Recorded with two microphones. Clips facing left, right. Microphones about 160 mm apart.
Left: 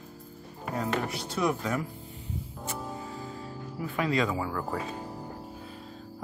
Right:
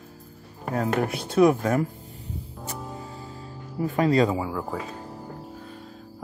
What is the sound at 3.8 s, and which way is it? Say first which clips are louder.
Speech: right 7 dB; 40° right (ahead or behind).